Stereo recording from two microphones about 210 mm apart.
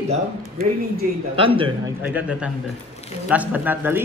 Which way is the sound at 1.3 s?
25° right (ahead or behind).